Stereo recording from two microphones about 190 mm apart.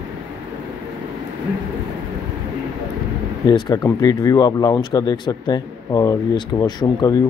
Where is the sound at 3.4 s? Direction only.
25° left (ahead or behind).